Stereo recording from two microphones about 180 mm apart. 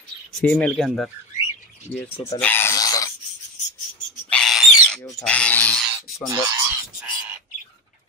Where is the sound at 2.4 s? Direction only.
10° left (ahead or behind).